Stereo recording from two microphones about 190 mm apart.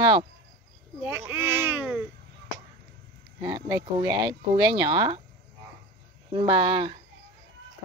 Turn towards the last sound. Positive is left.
turn(degrees=-25)  # may be behind; listen again after turning